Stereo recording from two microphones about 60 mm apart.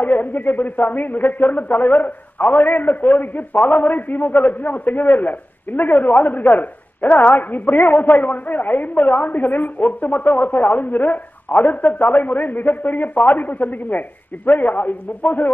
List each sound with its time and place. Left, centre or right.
0.0 s a man's voice: left